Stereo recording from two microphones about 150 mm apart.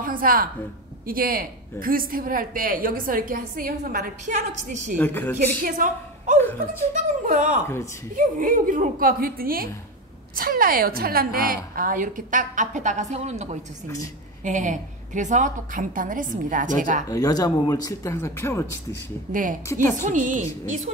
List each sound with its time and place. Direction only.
0.0 s a sound: 70° right (ahead or behind)
1.0 s a woman's voice: 75° right (ahead or behind)
4.9 s a woman's voice: 10° left (ahead or behind)
5.6 s a woman's voice: 65° right (ahead or behind)
17.1 s speech: 25° left (ahead or behind)
20.0 s a woman's voice: 55° right (ahead or behind)